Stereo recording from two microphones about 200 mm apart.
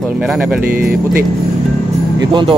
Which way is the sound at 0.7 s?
45° right (ahead or behind).